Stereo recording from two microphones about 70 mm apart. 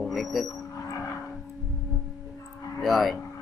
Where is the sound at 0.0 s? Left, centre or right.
Centre.